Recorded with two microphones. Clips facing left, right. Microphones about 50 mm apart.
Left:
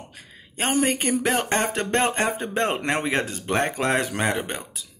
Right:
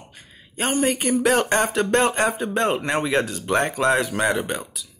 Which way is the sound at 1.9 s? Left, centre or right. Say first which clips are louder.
Right 3 dB; left.